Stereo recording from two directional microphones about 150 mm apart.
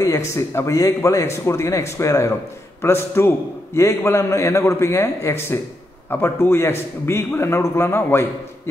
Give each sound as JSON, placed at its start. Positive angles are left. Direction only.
{"t": 0.4, "sound": "a man's voice", "side_deg": 20}